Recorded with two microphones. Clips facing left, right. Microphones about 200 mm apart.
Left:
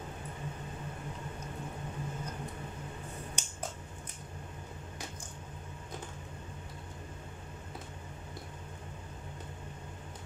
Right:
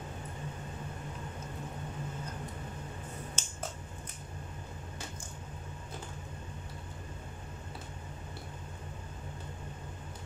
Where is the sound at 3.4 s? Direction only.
15° left (ahead or behind).